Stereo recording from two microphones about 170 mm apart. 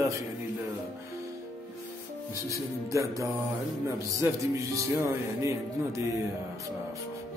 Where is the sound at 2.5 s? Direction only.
20° right (ahead or behind).